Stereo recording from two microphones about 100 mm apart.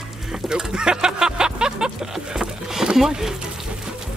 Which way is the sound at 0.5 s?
5° right (ahead or behind).